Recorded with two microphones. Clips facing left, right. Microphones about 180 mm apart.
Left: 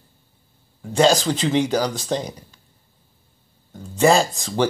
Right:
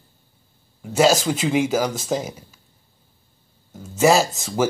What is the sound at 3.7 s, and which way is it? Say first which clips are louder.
Speech: even; 5° right (ahead or behind).